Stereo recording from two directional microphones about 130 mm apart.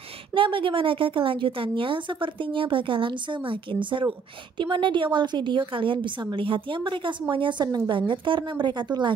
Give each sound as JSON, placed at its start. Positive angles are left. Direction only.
{"t": 0.3, "sound": "a woman's voice", "side_deg": -40}